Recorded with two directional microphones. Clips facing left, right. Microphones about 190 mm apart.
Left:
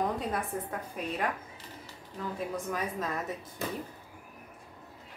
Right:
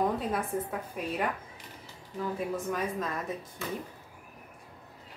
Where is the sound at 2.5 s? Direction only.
Centre (ahead or behind).